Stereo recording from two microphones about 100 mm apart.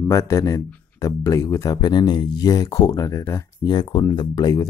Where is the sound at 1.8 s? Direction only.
45° left (ahead or behind); by 3.4 s 30° left (ahead or behind).